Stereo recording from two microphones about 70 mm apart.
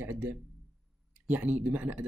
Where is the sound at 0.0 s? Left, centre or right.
Right.